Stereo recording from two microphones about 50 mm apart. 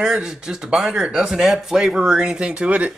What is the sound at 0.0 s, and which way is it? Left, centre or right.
A man's voice, centre.